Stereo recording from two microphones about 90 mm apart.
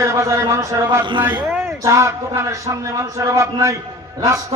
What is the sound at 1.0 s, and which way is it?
Speech, 60° right (ahead or behind).